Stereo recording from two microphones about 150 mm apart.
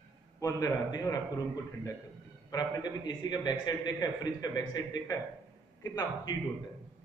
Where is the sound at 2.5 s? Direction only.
30° left (ahead or behind).